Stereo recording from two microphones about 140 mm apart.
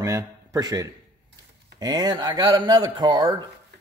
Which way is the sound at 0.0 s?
25° right (ahead or behind).